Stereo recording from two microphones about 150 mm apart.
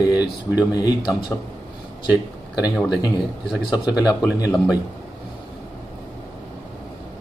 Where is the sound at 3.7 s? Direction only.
10° right (ahead or behind).